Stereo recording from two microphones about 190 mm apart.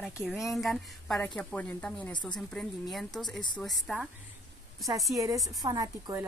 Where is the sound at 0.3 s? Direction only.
Centre (ahead or behind).